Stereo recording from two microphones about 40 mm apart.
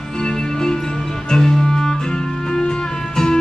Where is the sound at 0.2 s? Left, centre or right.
Centre.